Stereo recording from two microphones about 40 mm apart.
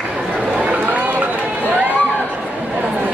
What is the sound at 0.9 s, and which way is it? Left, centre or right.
Run, right.